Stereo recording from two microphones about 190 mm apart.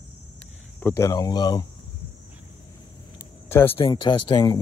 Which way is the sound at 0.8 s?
15° left (ahead or behind).